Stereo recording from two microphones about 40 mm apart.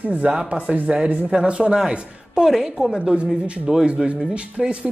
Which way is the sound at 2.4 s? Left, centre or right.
Centre.